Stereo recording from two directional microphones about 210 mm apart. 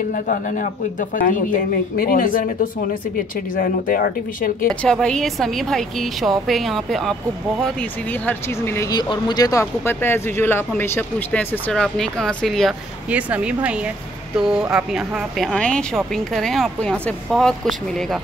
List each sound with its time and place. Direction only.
0.1 s speech: 45° left (ahead or behind)
4.8 s a woman's voice: 5° left (ahead or behind)